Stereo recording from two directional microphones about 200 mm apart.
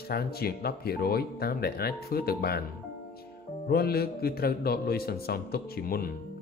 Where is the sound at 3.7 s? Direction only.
50° left (ahead or behind).